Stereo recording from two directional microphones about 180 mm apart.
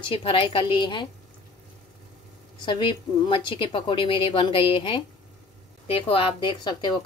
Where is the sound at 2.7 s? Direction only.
25° left (ahead or behind).